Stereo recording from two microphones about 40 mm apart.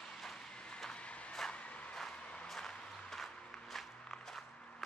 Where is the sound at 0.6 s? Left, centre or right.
Left.